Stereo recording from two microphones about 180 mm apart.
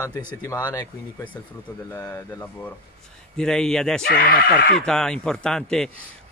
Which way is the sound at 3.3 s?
5° left (ahead or behind).